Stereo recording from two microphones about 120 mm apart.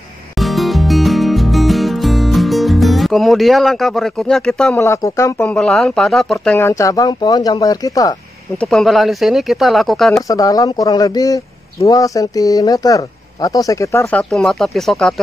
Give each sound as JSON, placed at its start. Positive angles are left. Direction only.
{"t": 0.4, "sound": "music", "side_deg": 0}
{"t": 4.7, "sound": "speech", "side_deg": 25}
{"t": 5.4, "sound": "speech", "side_deg": 5}
{"t": 6.7, "sound": "speech", "side_deg": 30}
{"t": 8.5, "sound": "speech", "side_deg": 5}
{"t": 10.2, "sound": "speech", "side_deg": 30}
{"t": 14.1, "sound": "speech", "side_deg": 5}